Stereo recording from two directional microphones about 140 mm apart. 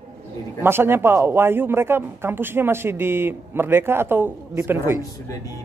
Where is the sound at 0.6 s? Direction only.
15° right (ahead or behind).